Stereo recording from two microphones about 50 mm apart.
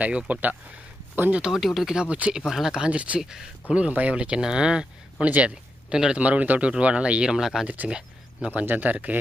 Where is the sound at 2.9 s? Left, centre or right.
Right.